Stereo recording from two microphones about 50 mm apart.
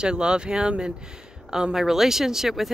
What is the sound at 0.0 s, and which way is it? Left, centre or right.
Speech, centre.